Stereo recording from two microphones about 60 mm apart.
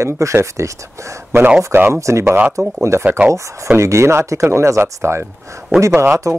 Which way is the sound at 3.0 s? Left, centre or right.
Right.